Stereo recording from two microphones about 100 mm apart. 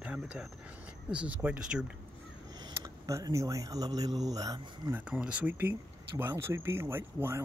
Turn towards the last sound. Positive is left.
turn(degrees=-25)  # may be behind; listen again after turning